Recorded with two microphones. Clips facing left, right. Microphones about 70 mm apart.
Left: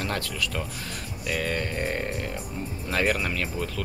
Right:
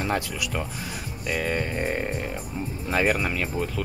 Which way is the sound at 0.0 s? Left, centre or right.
Centre.